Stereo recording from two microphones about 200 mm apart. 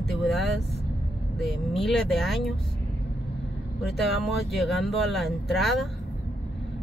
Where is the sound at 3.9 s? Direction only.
Centre (ahead or behind).